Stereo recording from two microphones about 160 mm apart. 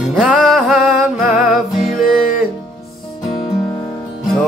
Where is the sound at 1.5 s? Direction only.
Centre (ahead or behind).